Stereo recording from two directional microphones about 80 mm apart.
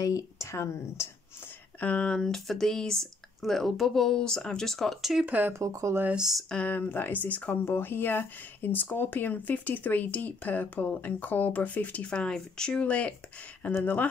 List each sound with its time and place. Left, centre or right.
0.0 s speech: left
1.8 s speech: centre
5.2 s speech: centre
5.5 s speech: right
6.1 s speech: centre
6.5 s speech: centre